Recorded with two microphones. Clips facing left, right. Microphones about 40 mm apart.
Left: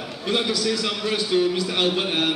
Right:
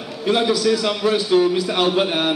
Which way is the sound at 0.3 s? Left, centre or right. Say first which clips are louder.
Right 6 dB; centre.